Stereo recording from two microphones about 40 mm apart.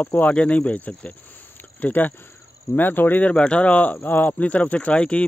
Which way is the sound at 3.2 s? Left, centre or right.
Left.